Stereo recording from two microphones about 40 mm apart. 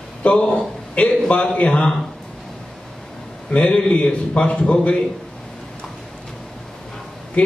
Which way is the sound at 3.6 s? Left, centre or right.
Left.